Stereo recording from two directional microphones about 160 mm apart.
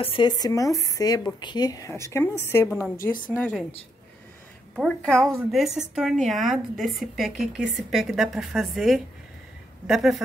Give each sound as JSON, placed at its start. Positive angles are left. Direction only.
{"t": 0.0, "sound": "speech", "side_deg": 30}
{"t": 3.0, "sound": "a woman's voice", "side_deg": 60}
{"t": 3.3, "sound": "a woman's voice", "side_deg": 10}
{"t": 4.7, "sound": "a woman's voice", "side_deg": 0}